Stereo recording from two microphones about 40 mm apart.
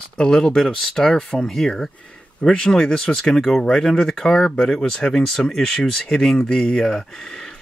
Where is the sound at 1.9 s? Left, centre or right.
Left.